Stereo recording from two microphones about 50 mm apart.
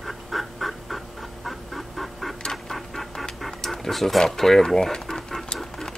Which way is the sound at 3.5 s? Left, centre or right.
Centre.